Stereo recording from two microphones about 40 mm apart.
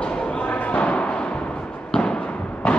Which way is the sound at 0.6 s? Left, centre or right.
Left.